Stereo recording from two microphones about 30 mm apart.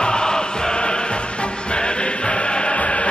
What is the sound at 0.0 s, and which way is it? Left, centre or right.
Music, left.